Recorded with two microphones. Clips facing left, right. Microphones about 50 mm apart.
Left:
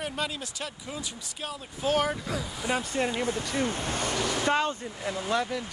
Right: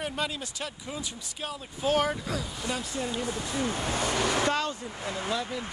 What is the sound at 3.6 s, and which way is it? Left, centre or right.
Speech, right.